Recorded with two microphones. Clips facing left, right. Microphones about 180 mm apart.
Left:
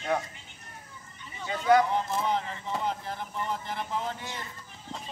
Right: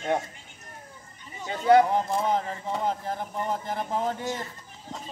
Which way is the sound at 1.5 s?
30° right (ahead or behind).